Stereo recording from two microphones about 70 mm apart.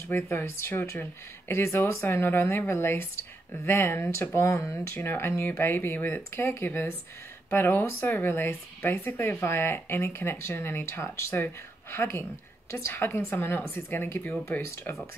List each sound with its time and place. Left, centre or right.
0.1 s speech: left